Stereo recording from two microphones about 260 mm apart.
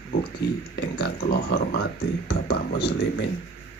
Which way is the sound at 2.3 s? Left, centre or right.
Left.